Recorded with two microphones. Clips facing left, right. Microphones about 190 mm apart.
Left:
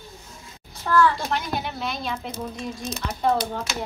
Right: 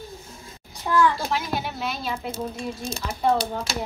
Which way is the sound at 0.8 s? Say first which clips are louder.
Left 1 dB; 15° right (ahead or behind).